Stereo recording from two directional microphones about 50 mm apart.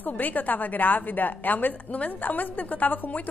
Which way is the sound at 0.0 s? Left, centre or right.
Left.